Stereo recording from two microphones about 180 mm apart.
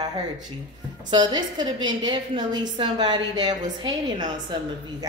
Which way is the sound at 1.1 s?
25° right (ahead or behind).